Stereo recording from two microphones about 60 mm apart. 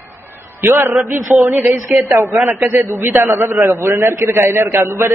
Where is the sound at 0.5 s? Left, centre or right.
Right.